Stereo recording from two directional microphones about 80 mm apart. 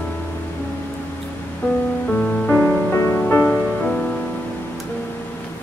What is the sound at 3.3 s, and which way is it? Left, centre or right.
Music, centre.